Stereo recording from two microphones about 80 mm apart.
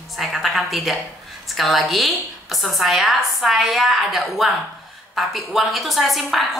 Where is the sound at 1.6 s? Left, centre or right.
Centre.